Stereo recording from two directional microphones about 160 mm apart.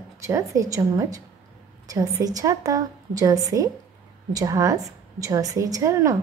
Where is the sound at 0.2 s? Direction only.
20° right (ahead or behind).